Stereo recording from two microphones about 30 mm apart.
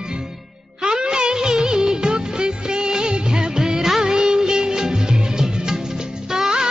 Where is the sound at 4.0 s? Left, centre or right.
Right.